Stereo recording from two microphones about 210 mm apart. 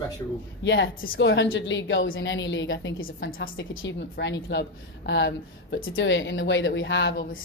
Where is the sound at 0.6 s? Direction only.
60° left (ahead or behind).